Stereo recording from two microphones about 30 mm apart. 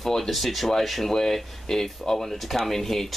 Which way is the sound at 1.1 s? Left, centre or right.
Centre.